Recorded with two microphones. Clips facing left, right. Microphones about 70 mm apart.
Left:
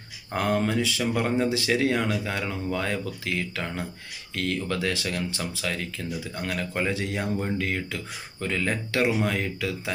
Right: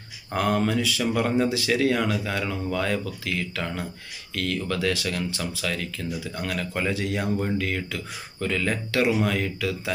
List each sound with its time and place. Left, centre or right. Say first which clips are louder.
0.3 s speech: right 1 dB; centre
7.2 s speech: right 2 dB; centre
7.5 s speech: right 1 dB; left